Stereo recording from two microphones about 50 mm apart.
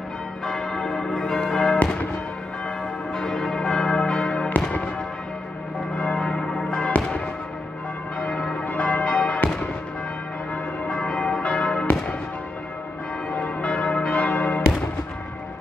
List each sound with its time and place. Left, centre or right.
0.5 s change ringing: centre
3.1 s church bell: centre
5.9 s church bell: centre
8.2 s change ringing: centre
8.5 s change ringing: left
10.5 s change ringing: centre
13.6 s church bell: centre
14.3 s change ringing: left